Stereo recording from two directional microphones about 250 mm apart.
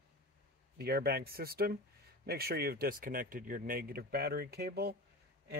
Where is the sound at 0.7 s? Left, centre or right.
Right.